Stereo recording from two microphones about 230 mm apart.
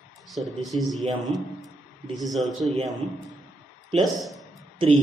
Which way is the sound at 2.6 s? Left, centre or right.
Right.